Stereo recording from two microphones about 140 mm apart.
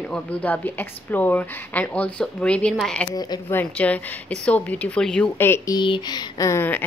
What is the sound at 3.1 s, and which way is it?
Speech, 30° left (ahead or behind).